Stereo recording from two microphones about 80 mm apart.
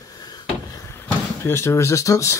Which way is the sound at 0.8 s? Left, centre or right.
Left.